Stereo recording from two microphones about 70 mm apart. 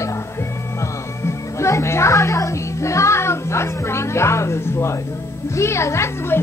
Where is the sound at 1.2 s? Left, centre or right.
Left.